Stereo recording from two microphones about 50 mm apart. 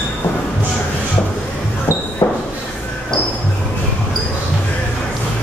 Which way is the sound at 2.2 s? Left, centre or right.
Left.